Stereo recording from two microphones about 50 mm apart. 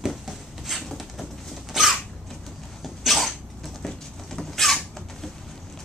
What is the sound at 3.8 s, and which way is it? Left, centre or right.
Rodents, centre.